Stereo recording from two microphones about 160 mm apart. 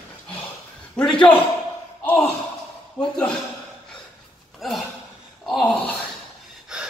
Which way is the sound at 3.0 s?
5° left (ahead or behind).